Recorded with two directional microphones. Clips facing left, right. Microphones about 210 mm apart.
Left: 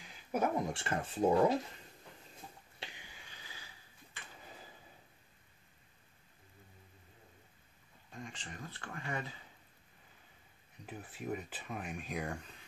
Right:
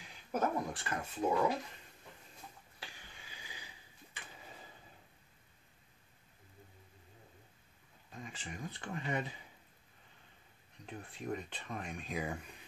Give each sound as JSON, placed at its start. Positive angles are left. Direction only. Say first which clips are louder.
{"t": 0.0, "sound": "a sound", "louder": "left 1 dB", "side_deg": 5}
{"t": 0.6, "sound": "speech", "louder": "left 3 dB", "side_deg": 25}
{"t": 2.8, "sound": "sniff", "louder": "left 2 dB", "side_deg": 20}
{"t": 3.3, "sound": "a sound", "louder": "right 2 dB", "side_deg": -15}
{"t": 4.4, "sound": "tick-tock", "louder": "left 2 dB", "side_deg": 0}
{"t": 8.1, "sound": "speech", "louder": "right 1 dB", "side_deg": -5}
{"t": 10.9, "sound": "speech", "louder": "even", "side_deg": 5}